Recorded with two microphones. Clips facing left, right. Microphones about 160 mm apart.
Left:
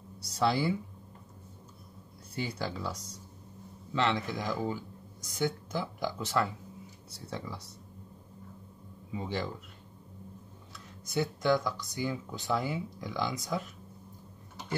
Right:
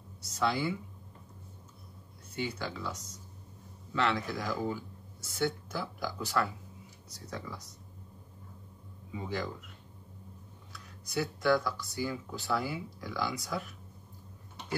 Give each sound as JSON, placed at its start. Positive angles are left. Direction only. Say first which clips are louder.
{"t": 0.2, "sound": "speech", "louder": "left 2 dB", "side_deg": 35}
{"t": 2.3, "sound": "speech", "louder": "left 1 dB", "side_deg": 35}
{"t": 3.9, "sound": "speech", "louder": "left 1 dB", "side_deg": 20}
{"t": 9.1, "sound": "speech", "louder": "left 1 dB", "side_deg": 30}
{"t": 10.7, "sound": "speech", "louder": "left 2 dB", "side_deg": 20}